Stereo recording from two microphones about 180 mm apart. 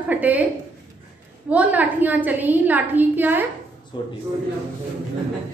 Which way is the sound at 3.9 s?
25° left (ahead or behind).